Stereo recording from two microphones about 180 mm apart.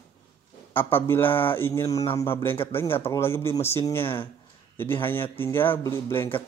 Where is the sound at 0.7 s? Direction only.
10° left (ahead or behind).